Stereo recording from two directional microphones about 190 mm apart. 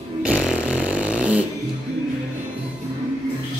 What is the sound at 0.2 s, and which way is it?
Fart, 5° right (ahead or behind).